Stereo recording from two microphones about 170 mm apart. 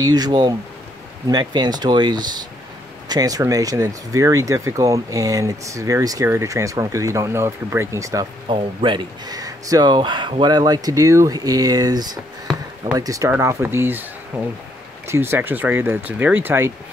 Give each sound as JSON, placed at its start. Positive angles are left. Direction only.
{"t": 0.0, "sound": "speech", "side_deg": -25}